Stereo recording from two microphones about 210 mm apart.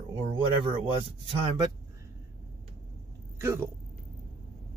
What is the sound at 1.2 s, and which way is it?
Speech, 20° right (ahead or behind).